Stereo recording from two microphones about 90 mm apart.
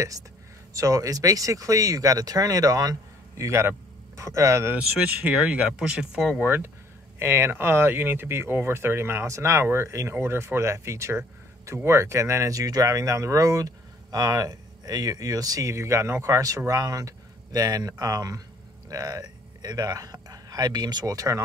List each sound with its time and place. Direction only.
0.7 s speech: 40° right (ahead or behind)
4.7 s speech: 15° right (ahead or behind)
6.4 s speech: 25° right (ahead or behind); by 21.4 s 40° right (ahead or behind)